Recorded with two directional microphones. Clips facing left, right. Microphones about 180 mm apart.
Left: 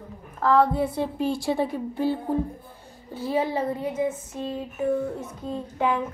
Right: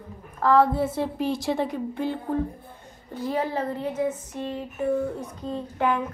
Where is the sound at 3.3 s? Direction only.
10° left (ahead or behind).